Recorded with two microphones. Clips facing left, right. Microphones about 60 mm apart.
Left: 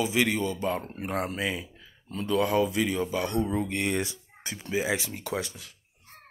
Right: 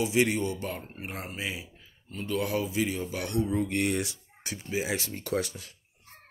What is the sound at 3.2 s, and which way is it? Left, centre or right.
Speech, left.